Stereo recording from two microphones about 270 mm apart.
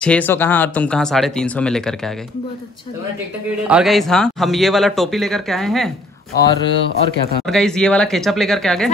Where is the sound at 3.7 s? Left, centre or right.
Centre.